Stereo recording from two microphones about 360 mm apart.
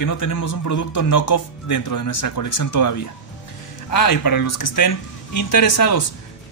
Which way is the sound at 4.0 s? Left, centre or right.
Left.